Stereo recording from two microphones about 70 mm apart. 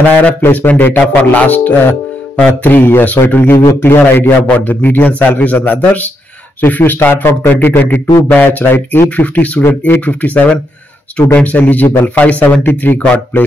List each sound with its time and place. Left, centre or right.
0.1 s a man's voice: left